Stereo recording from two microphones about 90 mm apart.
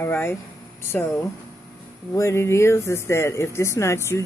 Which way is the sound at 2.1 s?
30° left (ahead or behind).